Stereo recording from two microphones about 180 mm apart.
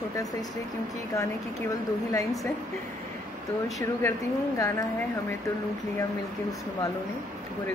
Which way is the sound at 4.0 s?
15° left (ahead or behind).